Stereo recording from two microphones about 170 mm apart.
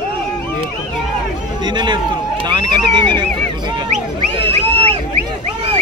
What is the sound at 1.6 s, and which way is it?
Speech, 25° right (ahead or behind).